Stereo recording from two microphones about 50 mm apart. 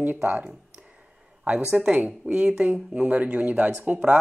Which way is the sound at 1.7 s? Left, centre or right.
Right.